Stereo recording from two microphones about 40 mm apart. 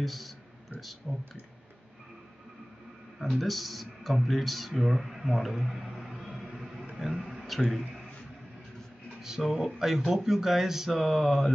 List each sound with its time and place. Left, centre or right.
0.0 s speech: centre
1.1 s speech: left
3.2 s speech: centre
7.2 s a sound: centre
9.2 s speech: centre